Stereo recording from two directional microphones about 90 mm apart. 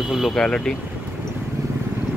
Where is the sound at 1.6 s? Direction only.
35° right (ahead or behind).